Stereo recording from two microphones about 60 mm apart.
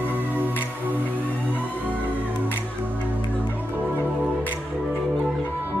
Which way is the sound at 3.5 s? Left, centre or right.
Left.